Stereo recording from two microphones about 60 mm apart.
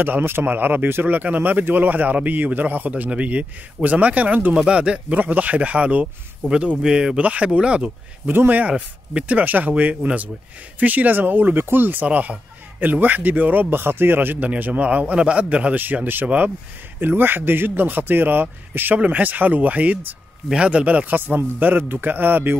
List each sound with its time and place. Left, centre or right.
0.0 s speech: right; by 7.2 s centre
7.2 s a man's voice: right
15.7 s a man's voice: right